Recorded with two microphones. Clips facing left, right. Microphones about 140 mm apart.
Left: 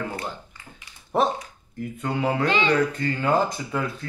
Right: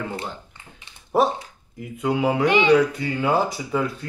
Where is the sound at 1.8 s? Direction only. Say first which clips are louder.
Right 4 dB; 5° right (ahead or behind).